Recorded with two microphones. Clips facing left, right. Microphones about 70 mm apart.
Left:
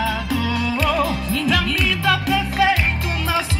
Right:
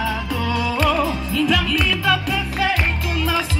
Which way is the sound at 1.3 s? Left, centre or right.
Left.